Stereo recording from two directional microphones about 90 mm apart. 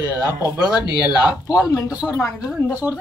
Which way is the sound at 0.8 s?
45° left (ahead or behind).